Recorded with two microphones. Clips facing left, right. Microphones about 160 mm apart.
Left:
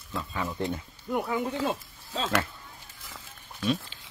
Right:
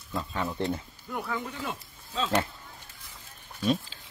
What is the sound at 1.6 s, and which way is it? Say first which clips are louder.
Speech: left 7 dB; 35° left (ahead or behind).